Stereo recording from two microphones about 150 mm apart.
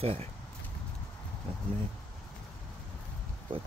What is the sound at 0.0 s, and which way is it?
Speech, 40° right (ahead or behind).